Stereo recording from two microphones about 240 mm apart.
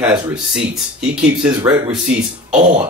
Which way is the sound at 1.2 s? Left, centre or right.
Centre.